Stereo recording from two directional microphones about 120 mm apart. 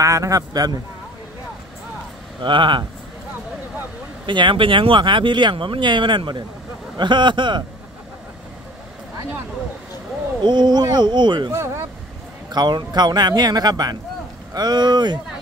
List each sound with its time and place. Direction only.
0.0 s speech: 25° right (ahead or behind)
2.4 s speech: 40° right (ahead or behind)
4.3 s speech: 40° right (ahead or behind)
10.4 s speech: 40° right (ahead or behind)
11.5 s speech: 25° right (ahead or behind)
12.5 s speech: 40° right (ahead or behind)